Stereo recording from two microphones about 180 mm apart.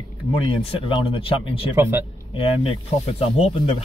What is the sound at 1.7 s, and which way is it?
Speech, 15° right (ahead or behind).